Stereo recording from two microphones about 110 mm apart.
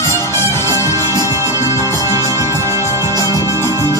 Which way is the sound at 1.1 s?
25° right (ahead or behind).